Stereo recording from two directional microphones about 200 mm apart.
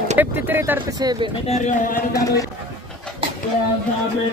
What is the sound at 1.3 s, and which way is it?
Speech, 35° left (ahead or behind).